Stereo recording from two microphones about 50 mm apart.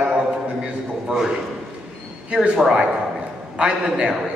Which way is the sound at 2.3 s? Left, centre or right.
Centre.